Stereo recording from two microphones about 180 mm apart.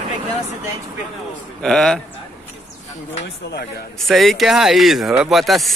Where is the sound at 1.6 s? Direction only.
Centre (ahead or behind).